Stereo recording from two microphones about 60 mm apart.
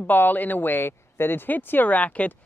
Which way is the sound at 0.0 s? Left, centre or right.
Left.